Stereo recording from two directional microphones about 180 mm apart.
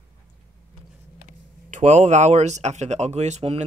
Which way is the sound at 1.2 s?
40° right (ahead or behind).